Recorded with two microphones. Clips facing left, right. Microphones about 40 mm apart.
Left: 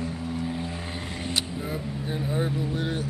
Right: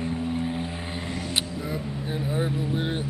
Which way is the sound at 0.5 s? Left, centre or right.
Centre.